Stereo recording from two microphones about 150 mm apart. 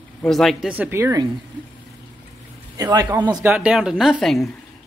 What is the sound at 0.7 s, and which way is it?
Speech, 15° right (ahead or behind).